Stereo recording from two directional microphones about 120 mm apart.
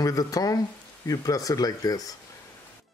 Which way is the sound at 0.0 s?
30° left (ahead or behind).